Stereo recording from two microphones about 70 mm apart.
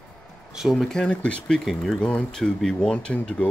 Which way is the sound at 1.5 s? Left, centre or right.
Centre.